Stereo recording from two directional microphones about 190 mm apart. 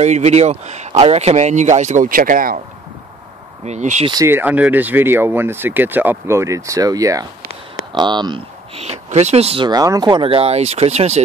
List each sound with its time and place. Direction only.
0.0 s speech: 35° right (ahead or behind)
3.6 s speech: 40° right (ahead or behind)
4.1 s speech: 15° right (ahead or behind); by 11.2 s 35° right (ahead or behind)